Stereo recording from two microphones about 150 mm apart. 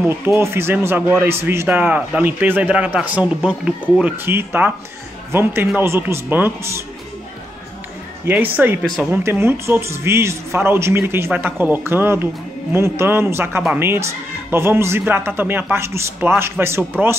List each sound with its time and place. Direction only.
0.2 s a man's voice: 15° right (ahead or behind)
8.3 s a man's voice: 10° right (ahead or behind)